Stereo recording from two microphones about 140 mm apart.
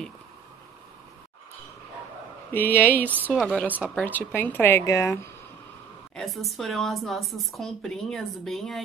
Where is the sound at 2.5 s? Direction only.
15° left (ahead or behind).